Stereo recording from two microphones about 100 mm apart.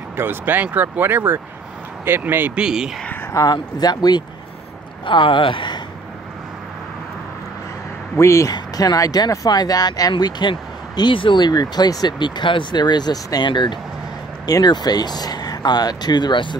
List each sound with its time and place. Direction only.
0.1 s speech: 20° right (ahead or behind)
2.6 s speech: 5° right (ahead or behind)
3.0 s a sound: 20° left (ahead or behind)
3.5 s speech: 45° left (ahead or behind)
5.0 s speech: 55° left (ahead or behind)
8.2 s speech: 30° left (ahead or behind); by 16.5 s 50° left (ahead or behind)